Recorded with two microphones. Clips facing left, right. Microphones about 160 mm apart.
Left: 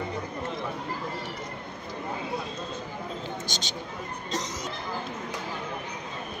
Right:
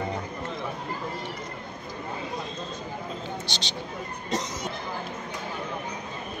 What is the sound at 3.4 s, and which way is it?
Speech, 45° left (ahead or behind).